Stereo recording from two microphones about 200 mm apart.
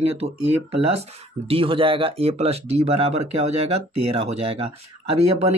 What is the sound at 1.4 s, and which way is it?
Speech, 25° right (ahead or behind).